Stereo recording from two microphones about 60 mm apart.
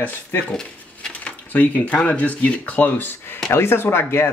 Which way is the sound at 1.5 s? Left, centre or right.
Left.